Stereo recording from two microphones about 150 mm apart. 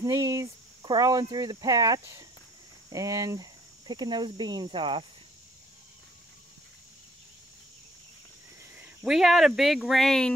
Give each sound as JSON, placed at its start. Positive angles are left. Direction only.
{"t": 0.0, "sound": "speech", "side_deg": -25}
{"t": 8.8, "sound": "speech", "side_deg": -5}